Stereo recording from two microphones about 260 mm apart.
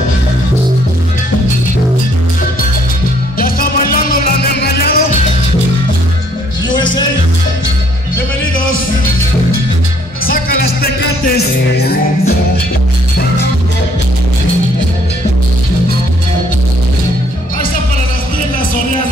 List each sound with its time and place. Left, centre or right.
3.3 s music: left
10.2 s music: left